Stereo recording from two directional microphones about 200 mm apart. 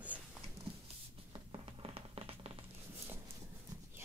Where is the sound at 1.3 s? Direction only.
25° right (ahead or behind).